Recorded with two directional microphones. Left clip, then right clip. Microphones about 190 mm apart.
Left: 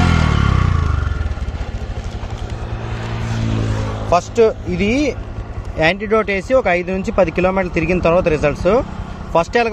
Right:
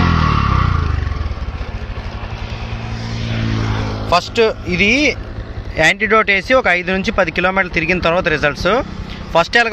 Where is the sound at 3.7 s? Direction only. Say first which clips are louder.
Right 2 dB; 35° right (ahead or behind).